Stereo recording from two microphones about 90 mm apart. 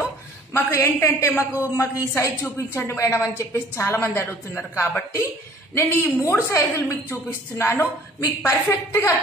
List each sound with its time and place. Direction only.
0.5 s a woman's voice: 30° left (ahead or behind)